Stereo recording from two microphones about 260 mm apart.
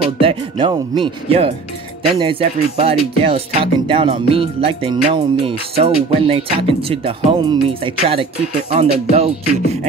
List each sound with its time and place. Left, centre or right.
0.2 s music: centre